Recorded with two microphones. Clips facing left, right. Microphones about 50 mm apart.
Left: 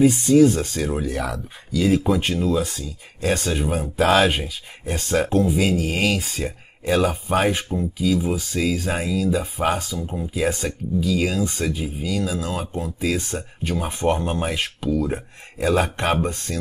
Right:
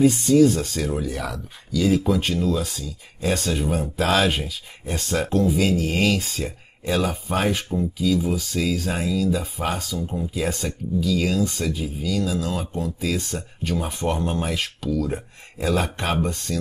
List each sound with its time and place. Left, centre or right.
0.3 s speech: left